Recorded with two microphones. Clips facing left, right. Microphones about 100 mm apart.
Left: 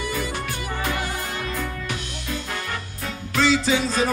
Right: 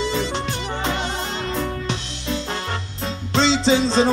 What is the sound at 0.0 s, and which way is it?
Music, 25° right (ahead or behind).